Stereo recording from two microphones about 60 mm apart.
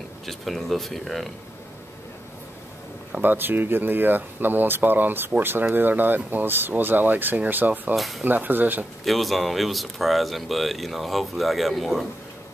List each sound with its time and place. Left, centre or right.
0.3 s speech: centre
3.2 s speech: right
7.9 s speech: centre
8.3 s speech: right
9.0 s speech: centre